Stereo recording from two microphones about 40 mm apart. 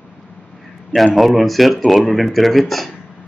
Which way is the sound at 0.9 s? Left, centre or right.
Centre.